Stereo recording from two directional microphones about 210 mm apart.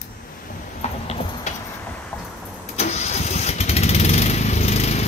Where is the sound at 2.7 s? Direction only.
30° left (ahead or behind).